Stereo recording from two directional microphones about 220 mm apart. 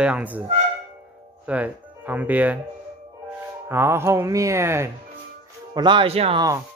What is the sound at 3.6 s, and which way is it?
Speech, 10° right (ahead or behind).